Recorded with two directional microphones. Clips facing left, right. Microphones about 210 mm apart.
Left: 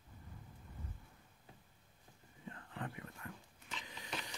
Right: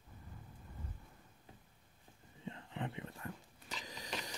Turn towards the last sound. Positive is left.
turn(degrees=-40)  # may be behind; listen again after turning